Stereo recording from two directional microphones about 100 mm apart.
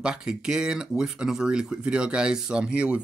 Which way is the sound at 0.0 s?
10° right (ahead or behind).